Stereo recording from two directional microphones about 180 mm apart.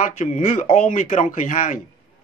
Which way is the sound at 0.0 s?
45° left (ahead or behind).